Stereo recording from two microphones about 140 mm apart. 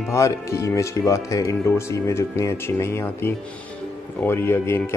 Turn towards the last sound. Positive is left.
turn(degrees=15)  # may be behind; listen again after turning